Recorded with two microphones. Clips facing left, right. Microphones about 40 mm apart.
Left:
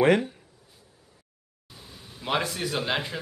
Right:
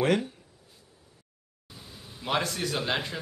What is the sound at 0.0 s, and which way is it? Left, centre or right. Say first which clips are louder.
Speech: left 5 dB; left.